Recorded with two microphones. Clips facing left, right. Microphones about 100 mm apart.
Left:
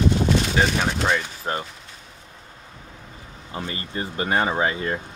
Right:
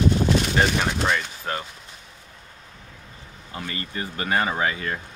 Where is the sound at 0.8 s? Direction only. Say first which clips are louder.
Left 1 dB; 10° left (ahead or behind).